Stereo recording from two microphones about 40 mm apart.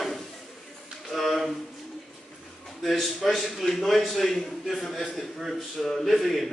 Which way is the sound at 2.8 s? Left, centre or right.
Centre.